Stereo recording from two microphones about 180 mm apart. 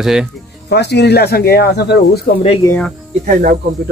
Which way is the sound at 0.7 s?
70° left (ahead or behind).